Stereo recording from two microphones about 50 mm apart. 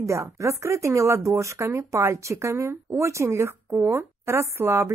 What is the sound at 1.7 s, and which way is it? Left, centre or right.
Speech, right.